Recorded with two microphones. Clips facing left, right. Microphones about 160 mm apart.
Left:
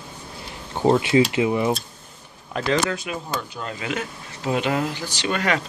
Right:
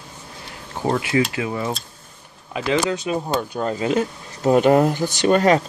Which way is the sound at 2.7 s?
15° right (ahead or behind).